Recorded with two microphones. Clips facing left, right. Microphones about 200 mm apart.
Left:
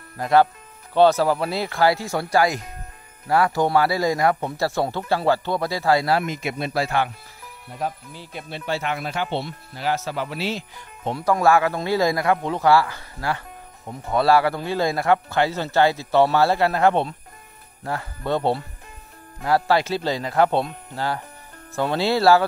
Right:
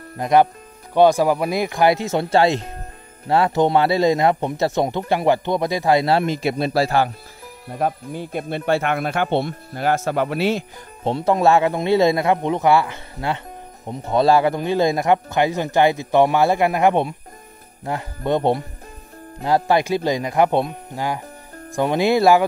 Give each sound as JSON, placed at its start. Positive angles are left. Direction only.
{"t": 0.2, "sound": "a man's voice", "side_deg": -20}
{"t": 7.7, "sound": "speech", "side_deg": -55}
{"t": 11.1, "sound": "a man's voice", "side_deg": -25}